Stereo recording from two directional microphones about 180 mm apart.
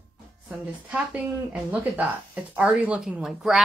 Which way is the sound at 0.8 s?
5° right (ahead or behind).